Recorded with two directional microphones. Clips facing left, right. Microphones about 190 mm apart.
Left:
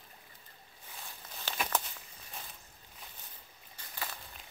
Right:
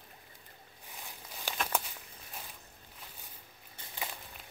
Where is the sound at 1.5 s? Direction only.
10° right (ahead or behind).